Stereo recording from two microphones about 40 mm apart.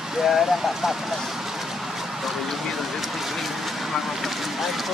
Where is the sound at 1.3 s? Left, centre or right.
Centre.